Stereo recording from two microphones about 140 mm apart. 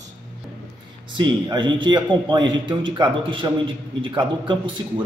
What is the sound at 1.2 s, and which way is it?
A man's voice, 35° right (ahead or behind).